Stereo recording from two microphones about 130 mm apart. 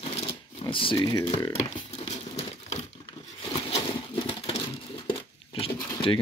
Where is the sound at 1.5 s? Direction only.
55° left (ahead or behind).